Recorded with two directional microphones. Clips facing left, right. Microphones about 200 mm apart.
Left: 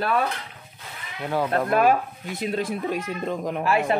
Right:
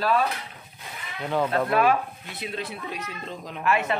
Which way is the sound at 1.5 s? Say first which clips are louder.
Left 3 dB; 45° left (ahead or behind).